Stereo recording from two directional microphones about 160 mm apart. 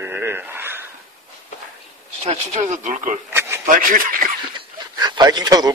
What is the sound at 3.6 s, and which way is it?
Speech, 55° right (ahead or behind).